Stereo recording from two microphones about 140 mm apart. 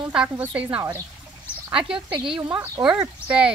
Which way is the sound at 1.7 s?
40° right (ahead or behind).